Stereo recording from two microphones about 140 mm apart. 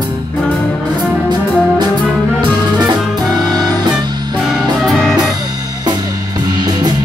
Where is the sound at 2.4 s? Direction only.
30° right (ahead or behind).